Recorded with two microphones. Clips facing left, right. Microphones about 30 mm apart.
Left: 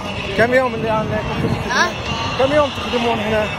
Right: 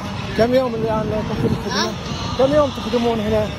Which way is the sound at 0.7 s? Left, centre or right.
Left.